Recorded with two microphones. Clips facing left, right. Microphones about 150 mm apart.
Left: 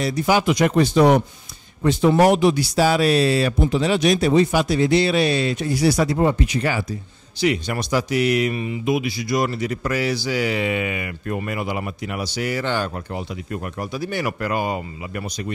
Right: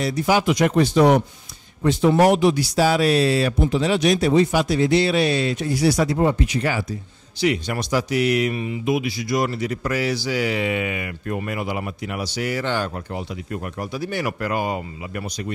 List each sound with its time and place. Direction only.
0.0 s speech: 5° right (ahead or behind)
13.9 s speech: 5° right (ahead or behind)